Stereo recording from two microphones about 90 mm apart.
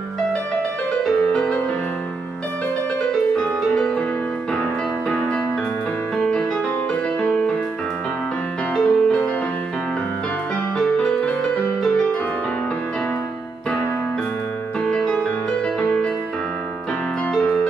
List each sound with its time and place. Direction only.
1.0 s music: 10° left (ahead or behind)
3.3 s music: 10° left (ahead or behind)
6.1 s music: 10° left (ahead or behind)
8.7 s music: 5° left (ahead or behind)
10.8 s music: 10° left (ahead or behind)
14.9 s music: 10° left (ahead or behind)
17.3 s music: 10° left (ahead or behind)